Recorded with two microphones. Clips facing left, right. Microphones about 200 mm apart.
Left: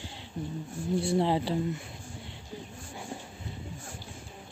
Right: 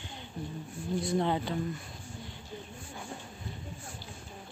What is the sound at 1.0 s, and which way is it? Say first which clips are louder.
Speech: left 2 dB; 30° left (ahead or behind).